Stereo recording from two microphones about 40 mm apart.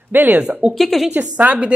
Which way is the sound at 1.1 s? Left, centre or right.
Right.